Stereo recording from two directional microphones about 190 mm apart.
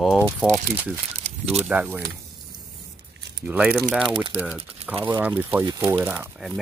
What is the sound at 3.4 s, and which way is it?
Speech, 5° right (ahead or behind).